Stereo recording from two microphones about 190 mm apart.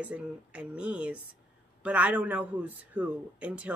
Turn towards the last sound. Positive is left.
turn(degrees=-5)  # may be behind; listen again after turning